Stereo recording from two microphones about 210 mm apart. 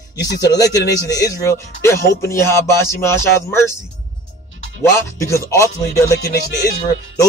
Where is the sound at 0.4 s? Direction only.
15° left (ahead or behind).